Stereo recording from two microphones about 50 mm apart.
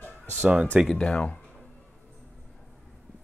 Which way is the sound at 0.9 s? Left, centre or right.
Left.